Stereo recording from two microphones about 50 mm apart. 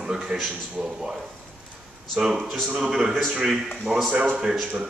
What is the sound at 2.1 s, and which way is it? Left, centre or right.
Speech, centre.